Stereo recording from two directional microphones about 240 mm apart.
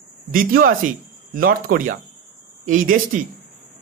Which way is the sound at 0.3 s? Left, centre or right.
Right.